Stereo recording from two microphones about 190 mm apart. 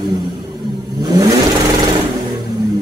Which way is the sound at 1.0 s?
20° right (ahead or behind).